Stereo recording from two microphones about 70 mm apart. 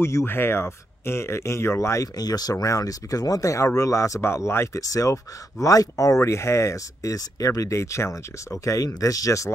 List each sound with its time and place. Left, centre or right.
0.0 s speech: left
2.1 s speech: left
2.5 s speech: left
4.8 s speech: left